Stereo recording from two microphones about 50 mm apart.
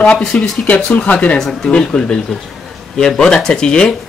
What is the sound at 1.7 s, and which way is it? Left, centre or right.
A man's voice, left.